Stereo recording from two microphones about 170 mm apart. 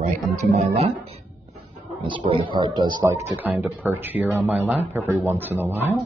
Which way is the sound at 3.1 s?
10° right (ahead or behind).